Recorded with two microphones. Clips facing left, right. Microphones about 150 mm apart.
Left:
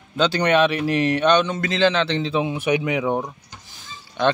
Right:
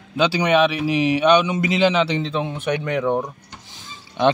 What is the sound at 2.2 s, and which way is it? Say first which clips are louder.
Speech: left 2 dB; 5° left (ahead or behind).